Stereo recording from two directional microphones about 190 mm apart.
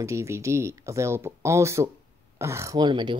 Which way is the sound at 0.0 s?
15° right (ahead or behind).